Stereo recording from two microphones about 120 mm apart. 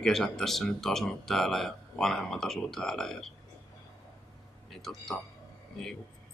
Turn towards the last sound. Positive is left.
turn(degrees=0)  # may be behind; listen again after turning